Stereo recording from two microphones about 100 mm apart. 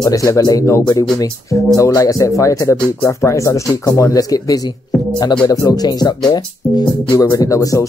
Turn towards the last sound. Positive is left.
turn(degrees=35)  # may be behind; listen again after turning